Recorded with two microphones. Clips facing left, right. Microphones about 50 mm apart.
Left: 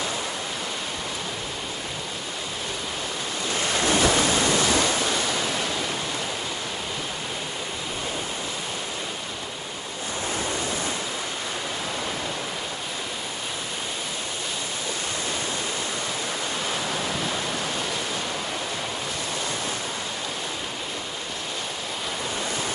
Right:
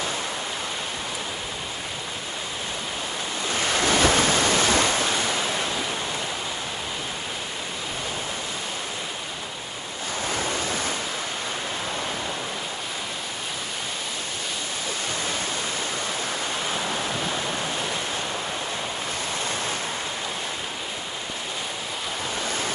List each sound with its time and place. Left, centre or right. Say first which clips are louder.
3.8 s waves: right 1 dB; right